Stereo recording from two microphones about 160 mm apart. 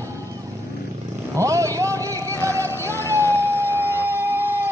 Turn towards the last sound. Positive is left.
turn(degrees=-15)  # may be behind; listen again after turning